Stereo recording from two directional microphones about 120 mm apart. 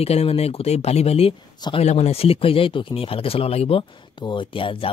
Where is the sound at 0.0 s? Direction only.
55° left (ahead or behind).